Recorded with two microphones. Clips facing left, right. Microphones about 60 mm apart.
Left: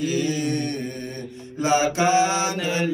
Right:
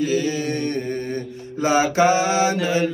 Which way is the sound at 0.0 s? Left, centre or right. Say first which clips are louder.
Right 2 dB; right.